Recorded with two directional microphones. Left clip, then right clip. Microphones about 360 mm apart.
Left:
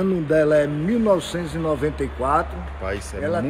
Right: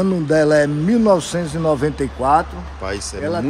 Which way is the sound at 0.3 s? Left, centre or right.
Right.